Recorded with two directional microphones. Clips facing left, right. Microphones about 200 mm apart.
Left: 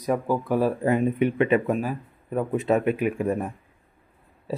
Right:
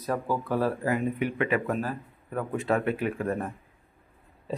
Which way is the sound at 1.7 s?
10° left (ahead or behind).